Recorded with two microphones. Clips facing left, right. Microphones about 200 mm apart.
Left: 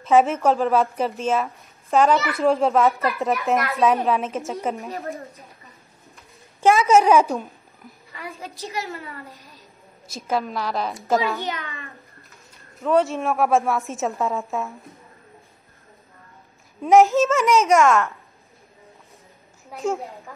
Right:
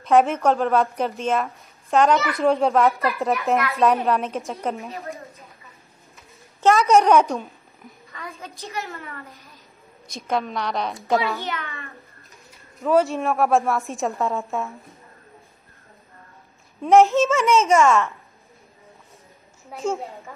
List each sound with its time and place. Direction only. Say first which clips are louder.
0.0 s speech: even; 5° left (ahead or behind)
6.6 s a child's voice: even; 5° left (ahead or behind)
11.3 s a child's voice: left 1 dB; 15° left (ahead or behind)
12.7 s speech: right 1 dB; centre (ahead or behind)
16.8 s speech: even; centre (ahead or behind)
19.7 s speech: left 1 dB; centre (ahead or behind)